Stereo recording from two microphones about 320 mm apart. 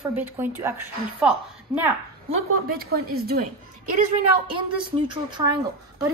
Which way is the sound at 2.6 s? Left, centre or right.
Right.